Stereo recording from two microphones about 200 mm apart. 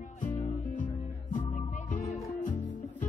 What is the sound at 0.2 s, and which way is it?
Music, 40° left (ahead or behind).